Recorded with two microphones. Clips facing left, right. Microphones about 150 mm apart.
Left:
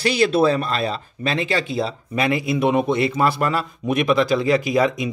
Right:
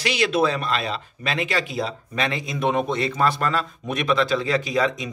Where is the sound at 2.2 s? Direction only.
10° left (ahead or behind).